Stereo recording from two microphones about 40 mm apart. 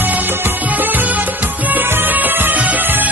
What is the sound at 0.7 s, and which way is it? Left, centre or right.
Music, right.